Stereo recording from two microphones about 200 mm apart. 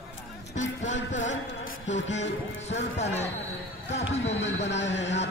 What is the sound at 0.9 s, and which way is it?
Music, 70° left (ahead or behind).